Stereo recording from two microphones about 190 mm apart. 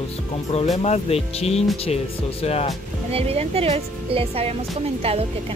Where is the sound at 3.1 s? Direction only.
30° right (ahead or behind).